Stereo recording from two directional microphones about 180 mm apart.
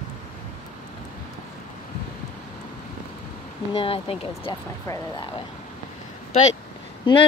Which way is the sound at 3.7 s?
30° left (ahead or behind).